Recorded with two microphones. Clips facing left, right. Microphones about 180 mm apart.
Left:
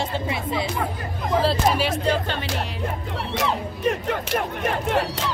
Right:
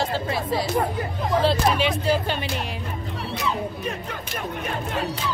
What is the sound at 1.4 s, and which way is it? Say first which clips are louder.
Speech: even; 5° left (ahead or behind).